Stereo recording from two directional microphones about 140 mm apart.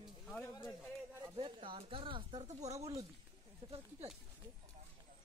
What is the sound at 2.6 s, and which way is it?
Speech, 50° right (ahead or behind).